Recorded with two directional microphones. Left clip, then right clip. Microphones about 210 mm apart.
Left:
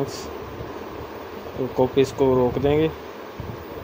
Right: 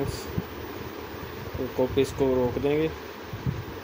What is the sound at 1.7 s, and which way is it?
Speech, 15° left (ahead or behind).